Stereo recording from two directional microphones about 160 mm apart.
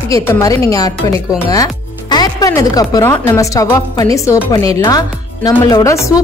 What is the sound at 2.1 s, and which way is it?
Music, 25° left (ahead or behind).